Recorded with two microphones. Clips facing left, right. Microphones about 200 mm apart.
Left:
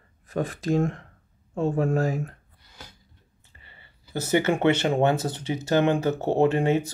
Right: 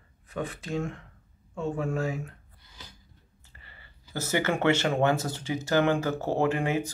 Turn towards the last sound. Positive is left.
turn(degrees=25)  # may be behind; listen again after turning